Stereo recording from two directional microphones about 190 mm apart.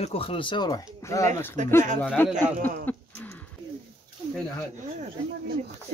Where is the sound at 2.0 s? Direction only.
10° left (ahead or behind).